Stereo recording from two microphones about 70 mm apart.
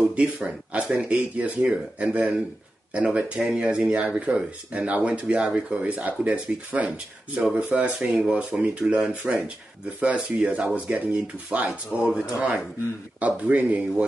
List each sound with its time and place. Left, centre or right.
0.0 s speech: centre